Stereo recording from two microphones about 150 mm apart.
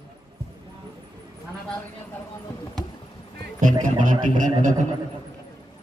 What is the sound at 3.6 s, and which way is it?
Music, 60° right (ahead or behind).